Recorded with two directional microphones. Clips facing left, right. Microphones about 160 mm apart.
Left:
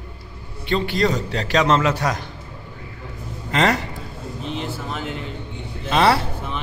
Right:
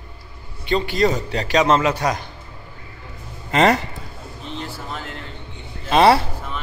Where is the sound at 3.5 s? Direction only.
20° right (ahead or behind).